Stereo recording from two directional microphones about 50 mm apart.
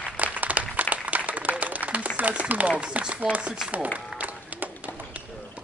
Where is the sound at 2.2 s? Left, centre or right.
Right.